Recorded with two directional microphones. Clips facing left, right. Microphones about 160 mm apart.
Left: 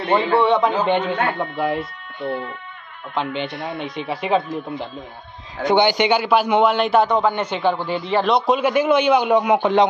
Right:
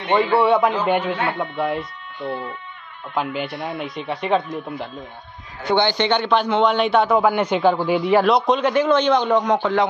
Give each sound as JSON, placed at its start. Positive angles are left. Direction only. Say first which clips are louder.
{"t": 0.4, "sound": "a man's voice", "louder": "even", "side_deg": -5}
{"t": 5.7, "sound": "a man's voice", "louder": "left 2 dB", "side_deg": 15}
{"t": 8.3, "sound": "a man's voice", "louder": "even", "side_deg": 0}